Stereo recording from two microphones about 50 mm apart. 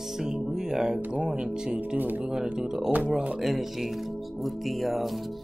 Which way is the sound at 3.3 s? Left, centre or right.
Centre.